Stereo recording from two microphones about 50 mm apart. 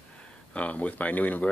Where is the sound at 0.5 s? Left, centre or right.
Left.